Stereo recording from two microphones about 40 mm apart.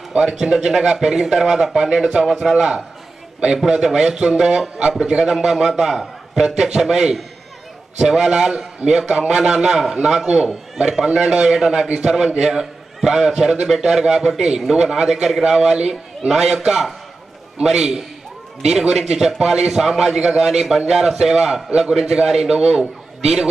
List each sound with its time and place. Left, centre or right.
0.1 s a man's voice: right
2.5 s a man's voice: right
9.0 s a man's voice: right
9.4 s a man's voice: centre